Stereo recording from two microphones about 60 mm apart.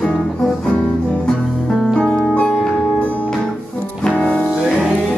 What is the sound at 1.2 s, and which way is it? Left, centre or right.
Music, centre.